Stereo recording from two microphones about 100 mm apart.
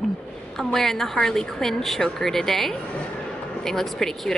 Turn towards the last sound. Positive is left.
turn(degrees=5)  # may be behind; listen again after turning